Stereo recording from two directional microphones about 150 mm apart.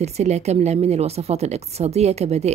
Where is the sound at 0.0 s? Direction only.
45° right (ahead or behind).